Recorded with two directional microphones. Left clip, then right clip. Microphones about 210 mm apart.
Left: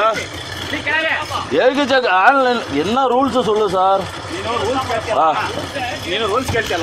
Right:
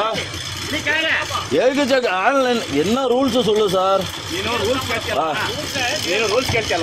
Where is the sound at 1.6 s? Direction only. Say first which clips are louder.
Left 3 dB; 40° right (ahead or behind).